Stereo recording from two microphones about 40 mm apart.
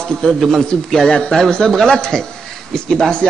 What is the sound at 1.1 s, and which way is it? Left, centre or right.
A man's voice, left.